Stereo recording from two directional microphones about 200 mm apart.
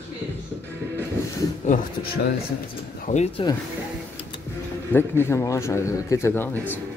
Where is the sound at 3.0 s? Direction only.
35° left (ahead or behind).